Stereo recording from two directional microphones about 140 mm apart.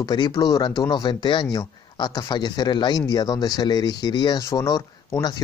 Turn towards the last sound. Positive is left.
turn(degrees=25)  # may be behind; listen again after turning